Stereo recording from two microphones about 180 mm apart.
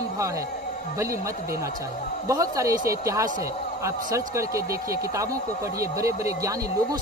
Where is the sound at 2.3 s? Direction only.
20° right (ahead or behind).